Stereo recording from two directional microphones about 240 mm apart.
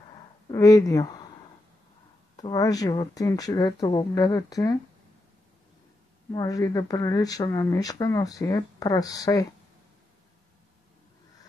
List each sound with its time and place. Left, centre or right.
0.5 s speech: centre
2.3 s speech: centre
6.3 s speech: centre